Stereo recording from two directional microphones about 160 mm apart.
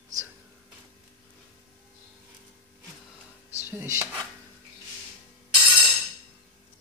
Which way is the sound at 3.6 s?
15° right (ahead or behind).